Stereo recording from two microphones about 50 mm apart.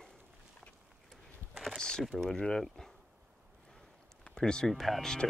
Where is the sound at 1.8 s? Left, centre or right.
Centre.